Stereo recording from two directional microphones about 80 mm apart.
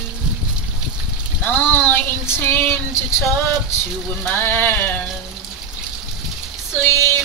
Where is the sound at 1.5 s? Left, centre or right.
Left.